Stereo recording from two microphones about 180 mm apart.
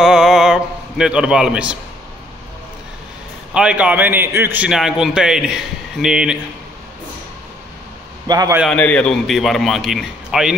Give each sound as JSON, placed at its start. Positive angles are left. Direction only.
{"t": 0.0, "sound": "a sound", "side_deg": -5}
{"t": 3.5, "sound": "a man's voice", "side_deg": -5}
{"t": 8.3, "sound": "a man's voice", "side_deg": -20}
{"t": 8.6, "sound": "a man's voice", "side_deg": 5}